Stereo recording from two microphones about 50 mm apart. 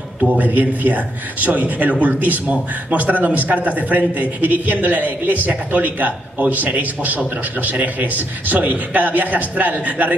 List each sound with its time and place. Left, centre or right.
0.4 s a man's voice: right